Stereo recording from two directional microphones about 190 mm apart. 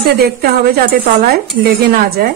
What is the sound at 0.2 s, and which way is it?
Speech, 50° right (ahead or behind).